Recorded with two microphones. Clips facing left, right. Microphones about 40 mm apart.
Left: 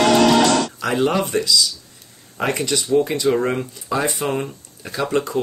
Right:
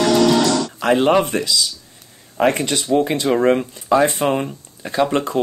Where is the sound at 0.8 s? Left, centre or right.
Right.